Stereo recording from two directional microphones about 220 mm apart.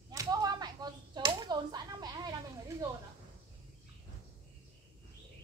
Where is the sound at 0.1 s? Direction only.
15° right (ahead or behind).